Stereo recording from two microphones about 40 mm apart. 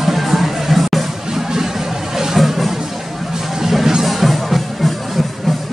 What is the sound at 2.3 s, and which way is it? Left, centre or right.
Music, centre.